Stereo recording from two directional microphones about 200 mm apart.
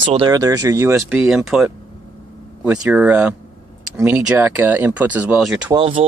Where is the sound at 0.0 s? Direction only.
30° right (ahead or behind).